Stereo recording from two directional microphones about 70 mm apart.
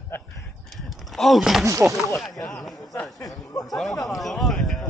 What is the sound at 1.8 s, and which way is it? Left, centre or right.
Speech, centre.